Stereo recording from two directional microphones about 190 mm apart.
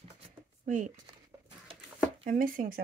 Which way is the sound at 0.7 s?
40° right (ahead or behind).